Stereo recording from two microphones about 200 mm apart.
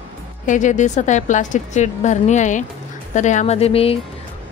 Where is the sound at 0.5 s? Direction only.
40° left (ahead or behind).